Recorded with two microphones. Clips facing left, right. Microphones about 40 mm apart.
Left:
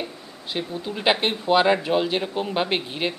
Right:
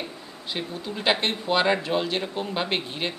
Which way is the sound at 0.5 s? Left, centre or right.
Centre.